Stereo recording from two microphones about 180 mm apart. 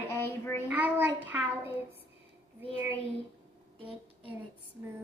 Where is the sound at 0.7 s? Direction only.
10° right (ahead or behind).